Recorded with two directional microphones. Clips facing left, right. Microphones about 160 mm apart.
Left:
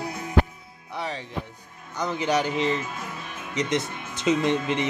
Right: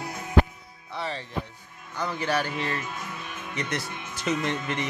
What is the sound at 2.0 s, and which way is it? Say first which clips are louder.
Speech: left 3 dB; 20° left (ahead or behind).